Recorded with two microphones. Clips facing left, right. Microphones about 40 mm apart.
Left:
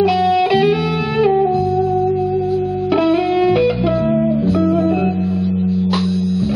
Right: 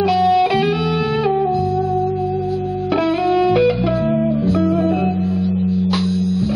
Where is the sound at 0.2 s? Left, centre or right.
Centre.